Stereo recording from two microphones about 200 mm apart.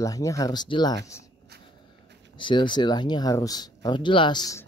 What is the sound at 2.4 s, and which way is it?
Speech, 25° left (ahead or behind).